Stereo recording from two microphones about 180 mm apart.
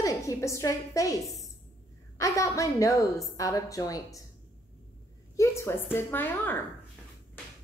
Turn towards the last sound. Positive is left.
turn(degrees=10)  # may be behind; listen again after turning